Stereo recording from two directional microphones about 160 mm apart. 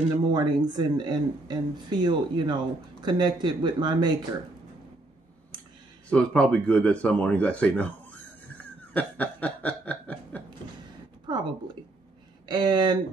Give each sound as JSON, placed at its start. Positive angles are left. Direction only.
{"t": 0.3, "sound": "speech", "side_deg": -25}
{"t": 6.0, "sound": "speech", "side_deg": 5}
{"t": 8.9, "sound": "snicker", "side_deg": 10}
{"t": 11.2, "sound": "speech", "side_deg": -30}